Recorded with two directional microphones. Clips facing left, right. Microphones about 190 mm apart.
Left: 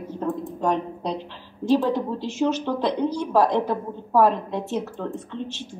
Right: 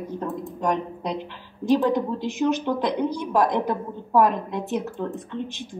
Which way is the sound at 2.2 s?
15° right (ahead or behind).